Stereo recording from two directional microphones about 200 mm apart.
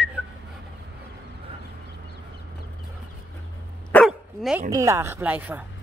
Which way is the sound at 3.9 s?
Centre (ahead or behind).